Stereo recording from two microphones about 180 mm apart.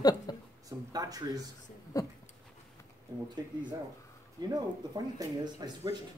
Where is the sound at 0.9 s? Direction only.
20° right (ahead or behind).